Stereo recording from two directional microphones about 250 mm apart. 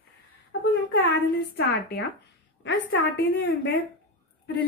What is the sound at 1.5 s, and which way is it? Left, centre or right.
A woman's voice, left.